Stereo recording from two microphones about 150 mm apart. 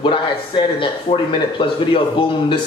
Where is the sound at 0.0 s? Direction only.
35° left (ahead or behind).